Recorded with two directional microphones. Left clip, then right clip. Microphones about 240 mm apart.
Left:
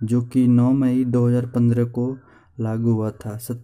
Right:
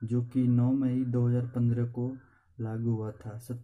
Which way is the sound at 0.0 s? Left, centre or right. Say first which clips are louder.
Left 10 dB; left.